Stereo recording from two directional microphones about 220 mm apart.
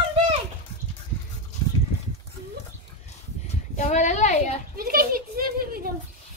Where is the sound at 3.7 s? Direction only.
35° left (ahead or behind).